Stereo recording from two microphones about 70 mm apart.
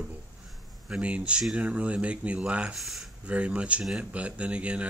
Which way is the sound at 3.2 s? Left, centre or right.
Centre.